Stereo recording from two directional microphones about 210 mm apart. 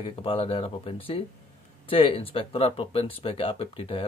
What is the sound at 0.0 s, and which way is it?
Speech, 25° left (ahead or behind).